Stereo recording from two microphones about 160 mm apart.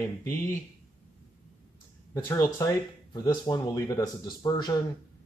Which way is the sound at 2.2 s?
15° left (ahead or behind).